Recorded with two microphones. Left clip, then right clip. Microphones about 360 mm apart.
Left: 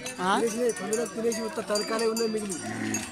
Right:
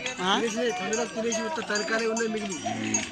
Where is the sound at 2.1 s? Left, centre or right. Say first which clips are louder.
Even; left.